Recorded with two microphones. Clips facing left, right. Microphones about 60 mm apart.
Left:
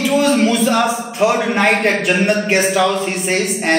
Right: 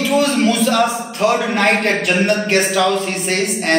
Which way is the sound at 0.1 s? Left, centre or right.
Centre.